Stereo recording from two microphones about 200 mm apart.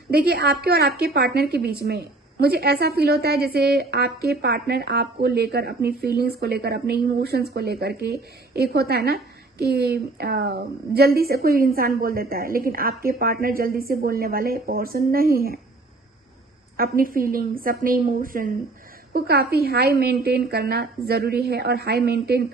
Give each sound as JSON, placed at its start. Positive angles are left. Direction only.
{"t": 0.1, "sound": "a woman's voice", "side_deg": -50}
{"t": 16.7, "sound": "a woman's voice", "side_deg": -45}